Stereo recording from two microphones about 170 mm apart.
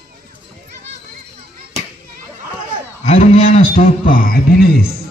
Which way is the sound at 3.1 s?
40° left (ahead or behind).